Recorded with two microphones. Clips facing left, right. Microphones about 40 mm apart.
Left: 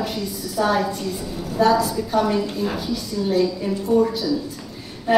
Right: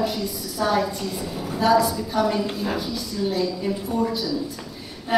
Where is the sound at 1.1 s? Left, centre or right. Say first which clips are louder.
Left 1 dB; centre.